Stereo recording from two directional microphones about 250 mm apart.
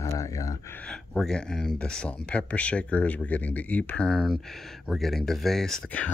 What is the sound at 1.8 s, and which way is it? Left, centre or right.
Speech, centre.